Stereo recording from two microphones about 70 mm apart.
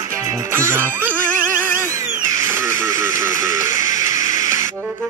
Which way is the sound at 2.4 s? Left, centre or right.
Right.